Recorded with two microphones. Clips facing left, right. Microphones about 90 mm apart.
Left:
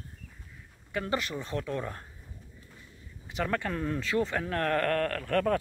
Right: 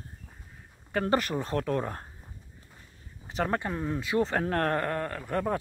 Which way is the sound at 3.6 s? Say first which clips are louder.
Even; 20° right (ahead or behind).